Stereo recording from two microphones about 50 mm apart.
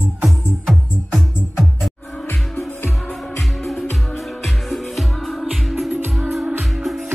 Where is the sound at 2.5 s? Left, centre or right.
Left.